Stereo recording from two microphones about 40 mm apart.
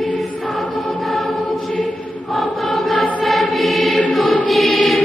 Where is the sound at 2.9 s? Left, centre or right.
Centre.